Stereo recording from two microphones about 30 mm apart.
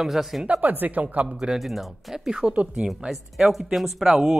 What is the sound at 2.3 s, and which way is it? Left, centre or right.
Speech, right.